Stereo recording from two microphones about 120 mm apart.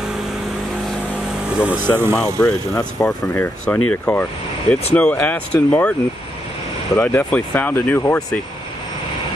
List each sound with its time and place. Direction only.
1.6 s speech: 15° right (ahead or behind)
2.2 s speech: 15° left (ahead or behind)
7.0 s speech: 15° left (ahead or behind)